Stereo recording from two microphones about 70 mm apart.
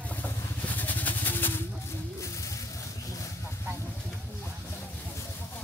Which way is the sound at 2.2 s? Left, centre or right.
Left.